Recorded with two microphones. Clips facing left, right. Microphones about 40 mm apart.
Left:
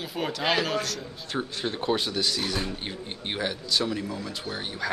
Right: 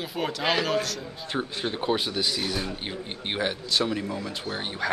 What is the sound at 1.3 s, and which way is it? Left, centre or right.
Speech, centre.